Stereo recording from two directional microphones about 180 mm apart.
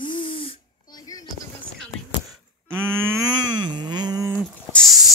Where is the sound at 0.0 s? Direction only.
25° left (ahead or behind).